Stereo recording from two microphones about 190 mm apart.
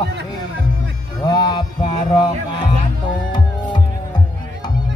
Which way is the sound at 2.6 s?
25° left (ahead or behind).